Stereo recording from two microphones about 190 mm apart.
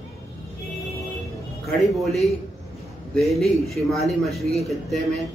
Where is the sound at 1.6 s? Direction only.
Centre (ahead or behind).